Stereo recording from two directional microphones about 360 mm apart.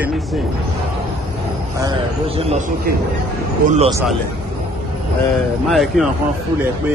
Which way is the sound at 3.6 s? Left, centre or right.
Centre.